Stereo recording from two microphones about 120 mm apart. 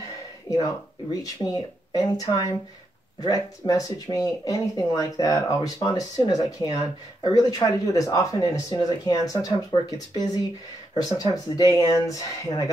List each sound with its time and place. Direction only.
1.2 s speech: 35° left (ahead or behind)